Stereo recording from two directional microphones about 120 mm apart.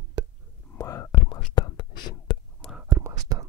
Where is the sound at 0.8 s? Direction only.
25° left (ahead or behind); by 1.8 s 40° left (ahead or behind).